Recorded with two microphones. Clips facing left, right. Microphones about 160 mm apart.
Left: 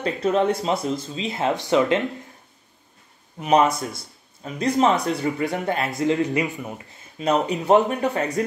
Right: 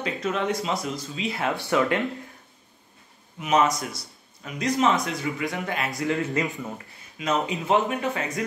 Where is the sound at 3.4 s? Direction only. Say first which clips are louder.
Left 4 dB; 35° left (ahead or behind).